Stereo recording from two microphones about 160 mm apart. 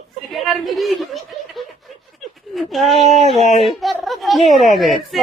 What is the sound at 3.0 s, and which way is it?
Speech, 40° right (ahead or behind).